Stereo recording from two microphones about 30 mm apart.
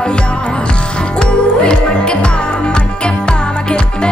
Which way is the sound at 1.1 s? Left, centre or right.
Left.